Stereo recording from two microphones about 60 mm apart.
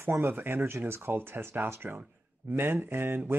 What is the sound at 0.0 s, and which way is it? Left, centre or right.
A man's voice, right.